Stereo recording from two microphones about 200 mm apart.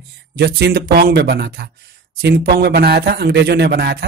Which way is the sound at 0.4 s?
50° right (ahead or behind).